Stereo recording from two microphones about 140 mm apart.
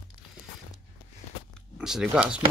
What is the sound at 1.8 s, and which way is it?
Speech, 5° right (ahead or behind).